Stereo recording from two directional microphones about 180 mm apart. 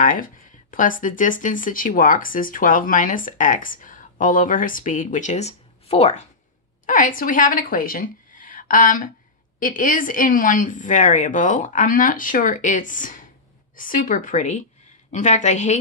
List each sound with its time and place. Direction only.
0.0 s speech: 50° left (ahead or behind)
6.9 s a woman's voice: 45° left (ahead or behind)